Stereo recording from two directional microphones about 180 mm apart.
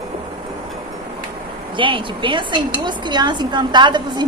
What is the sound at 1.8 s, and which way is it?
Speech, 30° right (ahead or behind).